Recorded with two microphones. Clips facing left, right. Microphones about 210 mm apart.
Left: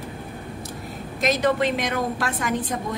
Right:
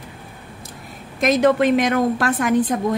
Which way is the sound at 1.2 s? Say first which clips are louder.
Right 5 dB; 55° right (ahead or behind).